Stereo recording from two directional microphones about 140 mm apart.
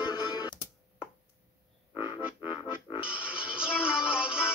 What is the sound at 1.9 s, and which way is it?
Frog, 35° left (ahead or behind).